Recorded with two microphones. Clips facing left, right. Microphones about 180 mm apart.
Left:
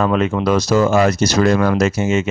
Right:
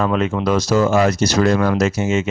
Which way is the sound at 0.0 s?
60° left (ahead or behind).